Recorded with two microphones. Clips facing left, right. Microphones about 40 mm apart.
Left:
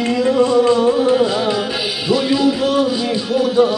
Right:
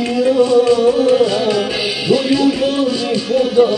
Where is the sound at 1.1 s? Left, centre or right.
Centre.